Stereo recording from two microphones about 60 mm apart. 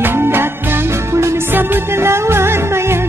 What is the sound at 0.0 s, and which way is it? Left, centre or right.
Music, right.